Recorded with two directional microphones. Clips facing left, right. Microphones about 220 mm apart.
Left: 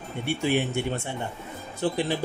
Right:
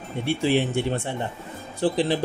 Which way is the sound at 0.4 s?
35° right (ahead or behind).